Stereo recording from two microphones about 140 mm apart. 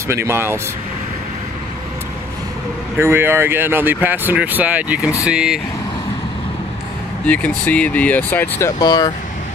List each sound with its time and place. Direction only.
0.1 s speech: 20° right (ahead or behind)
3.0 s speech: 15° right (ahead or behind)
7.2 s speech: 10° left (ahead or behind)
8.7 s speech: 30° left (ahead or behind)